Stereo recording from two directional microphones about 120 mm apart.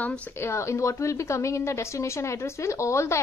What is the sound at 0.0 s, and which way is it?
A woman's voice, 15° left (ahead or behind).